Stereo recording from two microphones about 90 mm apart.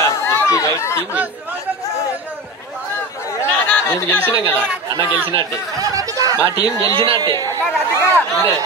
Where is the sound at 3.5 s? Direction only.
15° left (ahead or behind).